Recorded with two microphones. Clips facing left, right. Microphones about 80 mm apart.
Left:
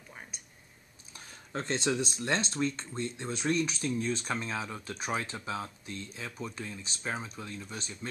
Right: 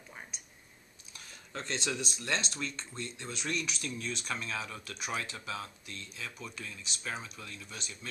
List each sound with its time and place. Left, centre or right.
0.1 s whispering: centre
1.1 s speech: left